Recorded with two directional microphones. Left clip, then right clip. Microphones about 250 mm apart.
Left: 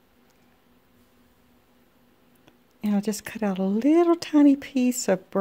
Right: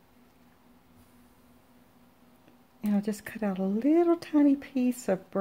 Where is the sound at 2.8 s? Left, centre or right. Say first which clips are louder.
Left 4 dB; centre.